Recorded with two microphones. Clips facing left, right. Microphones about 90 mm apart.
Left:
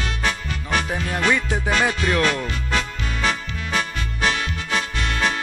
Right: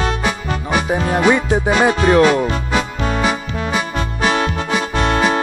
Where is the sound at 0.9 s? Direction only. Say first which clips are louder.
Right 9 dB; 25° right (ahead or behind); by 2.9 s 10° right (ahead or behind).